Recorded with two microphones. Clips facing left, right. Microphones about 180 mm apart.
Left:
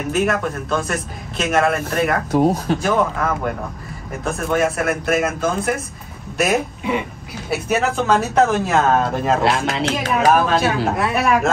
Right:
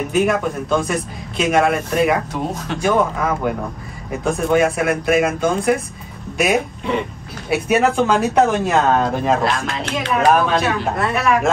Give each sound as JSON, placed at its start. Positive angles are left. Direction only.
{"t": 0.1, "sound": "a man's voice", "side_deg": 0}
{"t": 2.3, "sound": "speech", "side_deg": 35}
{"t": 2.8, "sound": "a man's voice", "side_deg": 0}